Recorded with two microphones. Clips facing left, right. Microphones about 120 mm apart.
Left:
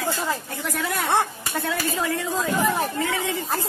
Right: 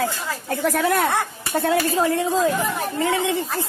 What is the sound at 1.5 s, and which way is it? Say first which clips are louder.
Speech: right 6 dB; 35° right (ahead or behind).